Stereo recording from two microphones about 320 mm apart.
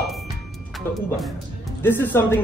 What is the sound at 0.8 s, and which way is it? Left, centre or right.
Speech, centre.